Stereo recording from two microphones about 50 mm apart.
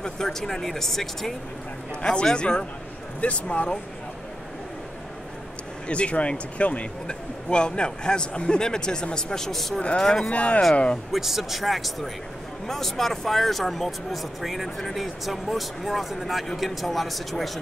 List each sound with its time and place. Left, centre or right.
0.0 s speech: centre
2.0 s a man's voice: left
5.9 s a man's voice: left
10.3 s a man's voice: left
11.1 s speech: centre